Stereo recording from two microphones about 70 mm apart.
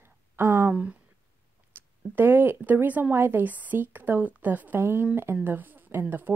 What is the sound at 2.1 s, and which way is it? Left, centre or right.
Speech, right.